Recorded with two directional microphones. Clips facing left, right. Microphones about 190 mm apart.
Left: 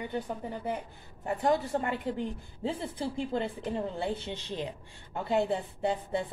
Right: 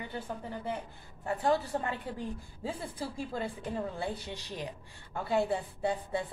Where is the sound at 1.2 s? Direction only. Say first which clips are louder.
Left 2 dB; 20° left (ahead or behind).